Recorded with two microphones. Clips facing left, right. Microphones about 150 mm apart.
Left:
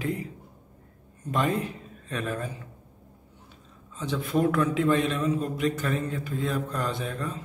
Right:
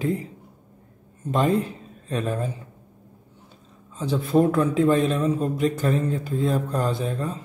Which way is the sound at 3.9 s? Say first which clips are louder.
Right 6 dB; 35° right (ahead or behind).